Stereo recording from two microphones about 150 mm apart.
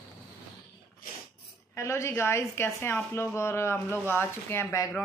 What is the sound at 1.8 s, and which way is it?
A woman's voice, 20° left (ahead or behind).